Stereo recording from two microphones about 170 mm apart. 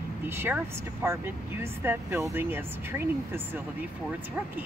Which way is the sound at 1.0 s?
15° right (ahead or behind).